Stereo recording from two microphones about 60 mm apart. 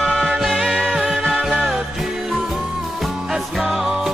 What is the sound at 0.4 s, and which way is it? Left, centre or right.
Music, centre.